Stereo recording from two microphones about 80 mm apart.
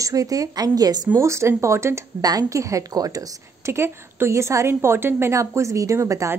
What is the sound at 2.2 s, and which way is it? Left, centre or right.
A woman's voice, right.